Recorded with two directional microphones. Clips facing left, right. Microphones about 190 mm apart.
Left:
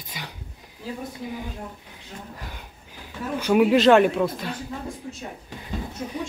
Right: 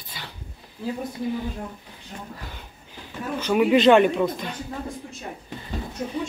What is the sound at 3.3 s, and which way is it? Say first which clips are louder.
Speech: left 1 dB; 5° left (ahead or behind).